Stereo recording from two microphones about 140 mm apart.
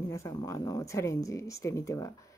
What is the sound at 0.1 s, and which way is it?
Speech, 25° left (ahead or behind).